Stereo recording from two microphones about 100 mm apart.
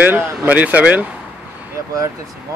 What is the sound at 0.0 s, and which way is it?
Speech, 20° right (ahead or behind).